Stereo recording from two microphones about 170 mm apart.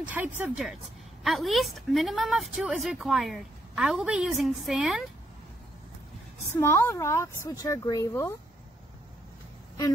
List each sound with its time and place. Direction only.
0.0 s speech: 10° right (ahead or behind)
6.6 s speech: 15° left (ahead or behind)